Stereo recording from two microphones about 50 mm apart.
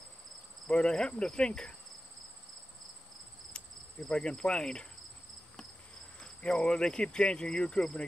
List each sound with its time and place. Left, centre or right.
0.7 s speech: centre
4.1 s speech: centre
6.1 s speech: centre